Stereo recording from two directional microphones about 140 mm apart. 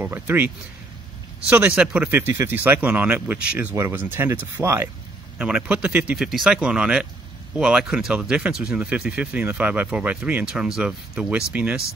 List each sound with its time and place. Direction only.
0.0 s speech: 15° right (ahead or behind)
1.5 s speech: 10° right (ahead or behind)